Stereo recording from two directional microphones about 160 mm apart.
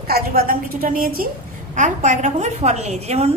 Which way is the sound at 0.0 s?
75° right (ahead or behind).